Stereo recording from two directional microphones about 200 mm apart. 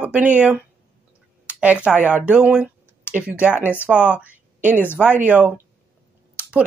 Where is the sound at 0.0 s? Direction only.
5° right (ahead or behind).